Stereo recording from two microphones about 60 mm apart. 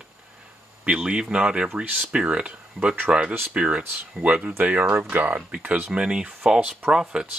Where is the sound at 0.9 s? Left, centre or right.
Centre.